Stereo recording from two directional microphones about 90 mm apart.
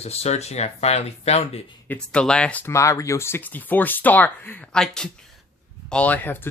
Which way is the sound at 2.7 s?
35° left (ahead or behind).